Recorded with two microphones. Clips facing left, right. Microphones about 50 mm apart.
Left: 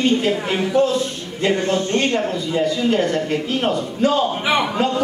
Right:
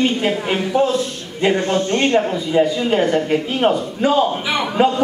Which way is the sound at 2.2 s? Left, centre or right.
Centre.